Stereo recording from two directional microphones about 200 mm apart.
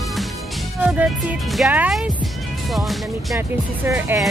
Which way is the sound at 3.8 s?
10° right (ahead or behind).